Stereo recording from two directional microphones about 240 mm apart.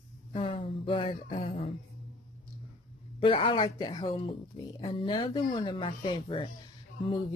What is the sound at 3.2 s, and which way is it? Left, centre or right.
Speech, left.